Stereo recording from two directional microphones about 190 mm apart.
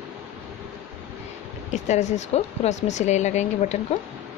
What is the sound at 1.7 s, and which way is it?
Speech, 40° left (ahead or behind).